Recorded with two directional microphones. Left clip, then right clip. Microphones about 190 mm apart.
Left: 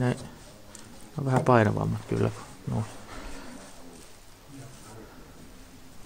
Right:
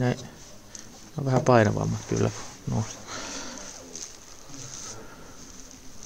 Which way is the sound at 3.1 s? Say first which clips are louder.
Right 7 dB; 35° right (ahead or behind).